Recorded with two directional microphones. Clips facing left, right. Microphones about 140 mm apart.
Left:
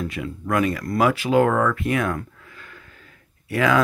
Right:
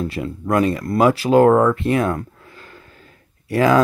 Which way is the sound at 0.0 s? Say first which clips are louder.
Right 4 dB; 35° right (ahead or behind).